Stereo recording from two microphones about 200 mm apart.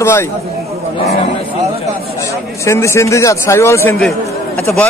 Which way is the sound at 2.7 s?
15° left (ahead or behind).